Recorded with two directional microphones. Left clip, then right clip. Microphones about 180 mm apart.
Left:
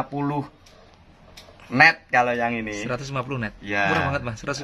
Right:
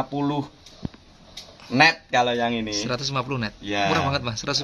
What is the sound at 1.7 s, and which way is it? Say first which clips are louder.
Speech: left 2 dB; 50° right (ahead or behind).